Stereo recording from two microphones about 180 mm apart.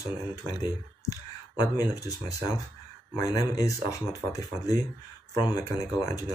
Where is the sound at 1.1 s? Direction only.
20° left (ahead or behind).